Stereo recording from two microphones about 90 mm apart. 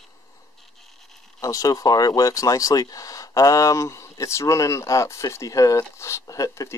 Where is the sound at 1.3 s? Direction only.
40° left (ahead or behind).